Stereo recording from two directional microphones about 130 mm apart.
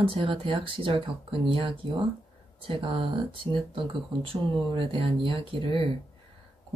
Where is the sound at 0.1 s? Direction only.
40° right (ahead or behind).